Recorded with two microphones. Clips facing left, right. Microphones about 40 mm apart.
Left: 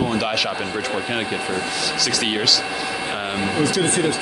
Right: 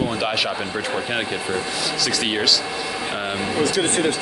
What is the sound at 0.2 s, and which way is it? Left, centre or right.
Speech, centre.